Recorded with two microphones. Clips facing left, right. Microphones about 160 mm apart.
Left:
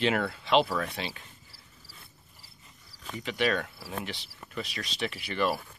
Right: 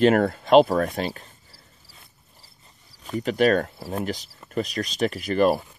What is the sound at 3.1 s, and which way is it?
Speech, 40° right (ahead or behind).